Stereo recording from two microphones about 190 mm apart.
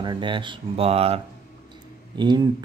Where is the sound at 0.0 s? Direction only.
25° right (ahead or behind).